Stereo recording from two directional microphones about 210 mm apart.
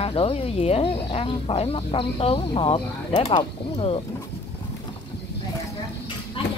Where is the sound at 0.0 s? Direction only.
25° left (ahead or behind).